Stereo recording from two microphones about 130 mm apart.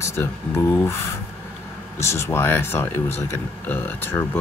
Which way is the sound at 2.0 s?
20° left (ahead or behind).